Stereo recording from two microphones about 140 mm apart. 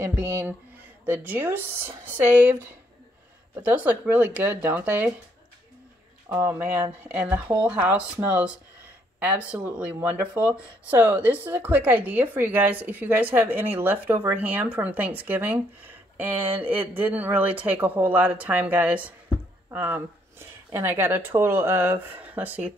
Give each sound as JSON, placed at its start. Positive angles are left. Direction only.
{"t": 0.0, "sound": "speech", "side_deg": -15}
{"t": 3.6, "sound": "speech", "side_deg": -10}
{"t": 6.2, "sound": "speech", "side_deg": -20}